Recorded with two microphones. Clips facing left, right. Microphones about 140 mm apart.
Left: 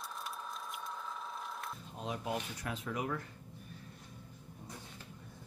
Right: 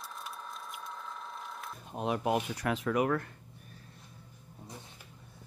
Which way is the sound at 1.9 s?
65° right (ahead or behind).